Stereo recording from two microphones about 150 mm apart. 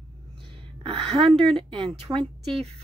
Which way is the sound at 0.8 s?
40° right (ahead or behind).